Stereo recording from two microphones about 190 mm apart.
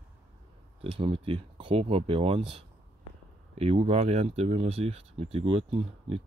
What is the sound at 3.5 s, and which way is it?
Speech, 35° right (ahead or behind).